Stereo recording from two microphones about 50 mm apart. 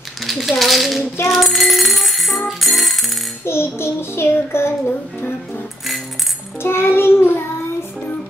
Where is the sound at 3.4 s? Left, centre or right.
Left.